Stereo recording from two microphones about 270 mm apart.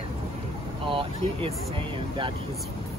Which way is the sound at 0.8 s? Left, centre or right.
Centre.